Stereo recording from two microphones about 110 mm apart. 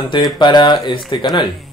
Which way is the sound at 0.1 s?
45° left (ahead or behind).